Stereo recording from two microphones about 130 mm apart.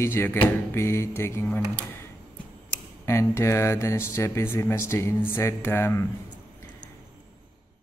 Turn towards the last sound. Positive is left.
turn(degrees=20)  # may be behind; listen again after turning